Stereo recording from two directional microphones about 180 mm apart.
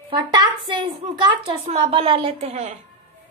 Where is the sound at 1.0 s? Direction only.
35° right (ahead or behind).